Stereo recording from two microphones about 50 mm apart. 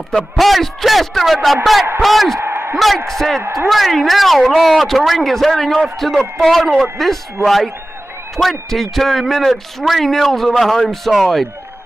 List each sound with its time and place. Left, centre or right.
0.1 s a man's voice: centre
2.5 s a sound: right
3.1 s a man's voice: centre